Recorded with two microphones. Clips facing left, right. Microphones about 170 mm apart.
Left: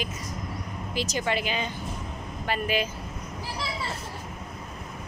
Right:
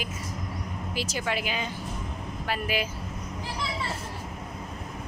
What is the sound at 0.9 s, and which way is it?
Speech, 5° right (ahead or behind).